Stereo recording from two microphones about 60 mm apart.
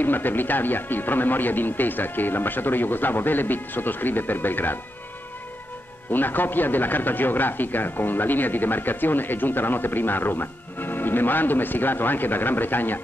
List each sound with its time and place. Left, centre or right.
0.0 s speech: left
6.1 s speech: left